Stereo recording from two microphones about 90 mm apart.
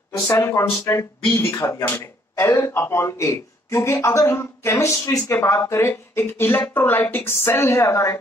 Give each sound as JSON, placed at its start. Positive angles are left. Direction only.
{"t": 0.3, "sound": "a woman's voice", "side_deg": 30}